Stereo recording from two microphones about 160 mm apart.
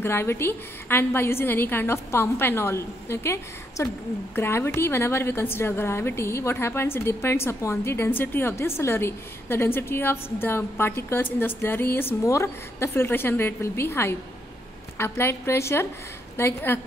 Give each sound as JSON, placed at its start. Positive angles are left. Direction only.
{"t": 0.0, "sound": "a woman's voice", "side_deg": 15}